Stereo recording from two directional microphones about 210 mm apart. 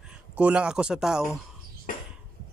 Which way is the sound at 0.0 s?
5° right (ahead or behind).